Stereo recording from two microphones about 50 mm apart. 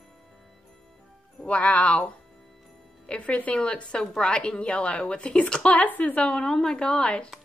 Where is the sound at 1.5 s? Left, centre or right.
Left.